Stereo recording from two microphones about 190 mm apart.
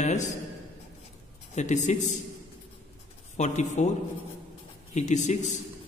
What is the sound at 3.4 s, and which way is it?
Speech, 40° left (ahead or behind).